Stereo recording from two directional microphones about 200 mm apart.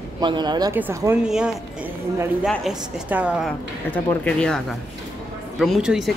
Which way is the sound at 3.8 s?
10° left (ahead or behind).